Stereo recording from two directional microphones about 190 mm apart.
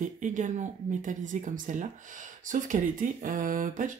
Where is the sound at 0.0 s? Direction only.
40° right (ahead or behind).